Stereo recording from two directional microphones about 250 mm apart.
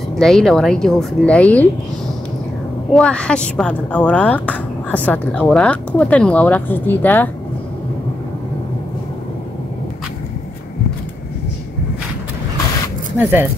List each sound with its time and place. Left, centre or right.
0.1 s speech: centre
2.9 s speech: centre
13.2 s speech: centre